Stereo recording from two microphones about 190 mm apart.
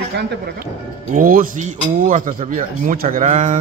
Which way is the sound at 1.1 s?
45° right (ahead or behind).